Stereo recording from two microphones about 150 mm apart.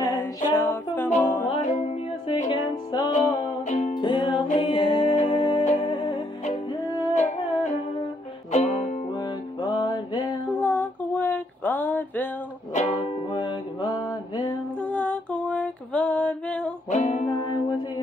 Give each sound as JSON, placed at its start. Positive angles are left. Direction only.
{"t": 0.0, "sound": "music", "side_deg": 15}
{"t": 1.6, "sound": "music", "side_deg": 50}
{"t": 2.5, "sound": "music", "side_deg": 30}
{"t": 3.6, "sound": "music", "side_deg": 50}
{"t": 3.9, "sound": "music", "side_deg": 30}
{"t": 9.1, "sound": "music", "side_deg": 30}
{"t": 10.5, "sound": "a sound", "side_deg": 10}
{"t": 13.3, "sound": "music", "side_deg": 30}
{"t": 14.8, "sound": "music", "side_deg": 10}
{"t": 16.9, "sound": "music", "side_deg": 50}
{"t": 17.3, "sound": "music", "side_deg": 30}